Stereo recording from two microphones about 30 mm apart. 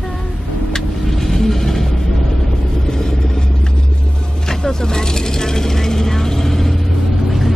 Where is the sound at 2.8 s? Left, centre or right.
Left.